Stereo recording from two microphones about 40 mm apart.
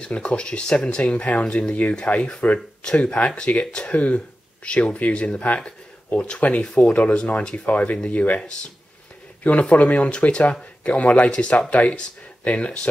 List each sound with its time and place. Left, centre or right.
0.0 s speech: left
2.8 s speech: left
9.4 s speech: left